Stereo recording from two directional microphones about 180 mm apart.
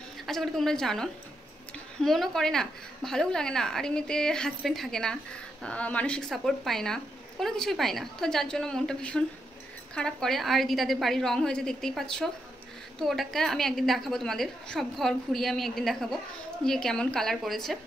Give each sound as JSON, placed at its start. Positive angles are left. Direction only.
{"t": 0.3, "sound": "a woman's voice", "side_deg": 0}